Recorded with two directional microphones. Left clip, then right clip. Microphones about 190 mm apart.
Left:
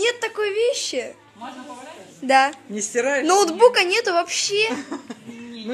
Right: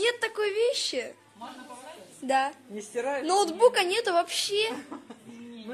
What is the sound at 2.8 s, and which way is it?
Speech, 60° left (ahead or behind).